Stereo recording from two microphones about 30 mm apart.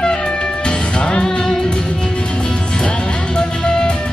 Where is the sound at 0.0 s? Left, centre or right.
Left.